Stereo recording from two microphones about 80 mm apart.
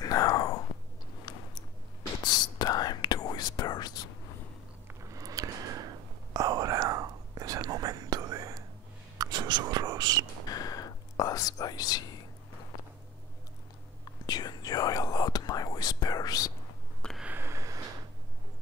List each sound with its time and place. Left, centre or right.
0.0 s whispering: left
1.3 s a sound: left
2.2 s whispering: left
4.8 s whispering: right
9.2 s whispering: right
10.5 s whispering: left
14.2 s whispering: left
17.0 s a sound: centre
17.4 s a sound: right